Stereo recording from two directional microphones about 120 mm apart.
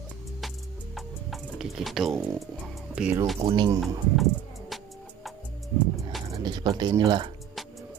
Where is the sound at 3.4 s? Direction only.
50° right (ahead or behind).